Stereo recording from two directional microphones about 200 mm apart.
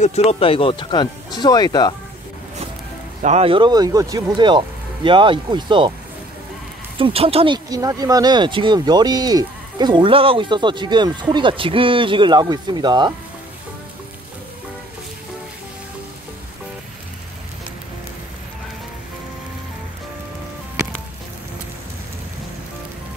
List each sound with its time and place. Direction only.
0.0 s speech: 35° left (ahead or behind)
3.2 s speech: 35° right (ahead or behind)
7.0 s speech: 30° right (ahead or behind)